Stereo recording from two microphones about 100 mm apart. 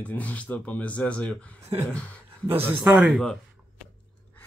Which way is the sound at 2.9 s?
5° right (ahead or behind).